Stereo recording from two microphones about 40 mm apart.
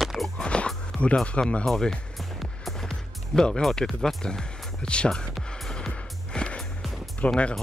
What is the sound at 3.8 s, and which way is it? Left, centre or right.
Speech, centre.